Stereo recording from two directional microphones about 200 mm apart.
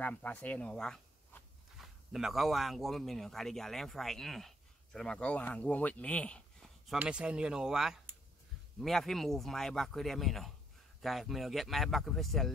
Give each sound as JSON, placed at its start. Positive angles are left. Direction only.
{"t": 0.0, "sound": "speech", "side_deg": 10}
{"t": 6.9, "sound": "speech", "side_deg": -5}